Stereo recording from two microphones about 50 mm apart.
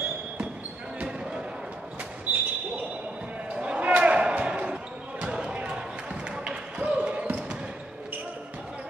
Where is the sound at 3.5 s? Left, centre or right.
Right.